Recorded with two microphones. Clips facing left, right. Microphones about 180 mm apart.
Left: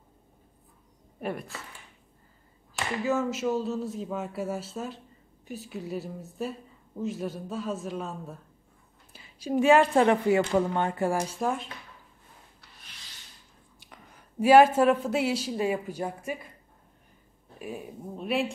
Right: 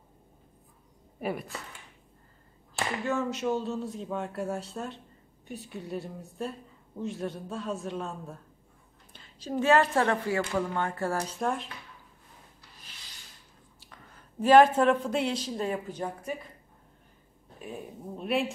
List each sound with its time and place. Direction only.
1.2 s speech: 5° right (ahead or behind)
3.0 s speech: 5° left (ahead or behind)
13.7 s speech: 15° left (ahead or behind)
17.6 s speech: 5° left (ahead or behind)